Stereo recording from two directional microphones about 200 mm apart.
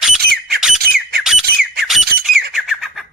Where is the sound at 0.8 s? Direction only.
50° right (ahead or behind).